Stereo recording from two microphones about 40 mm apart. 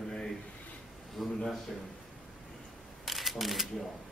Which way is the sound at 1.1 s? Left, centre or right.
Centre.